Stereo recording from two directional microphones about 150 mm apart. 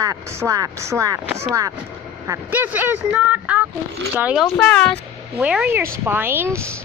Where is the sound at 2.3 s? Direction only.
10° right (ahead or behind).